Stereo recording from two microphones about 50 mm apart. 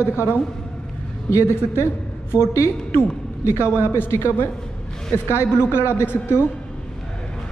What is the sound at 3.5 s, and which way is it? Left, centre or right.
Speech, left.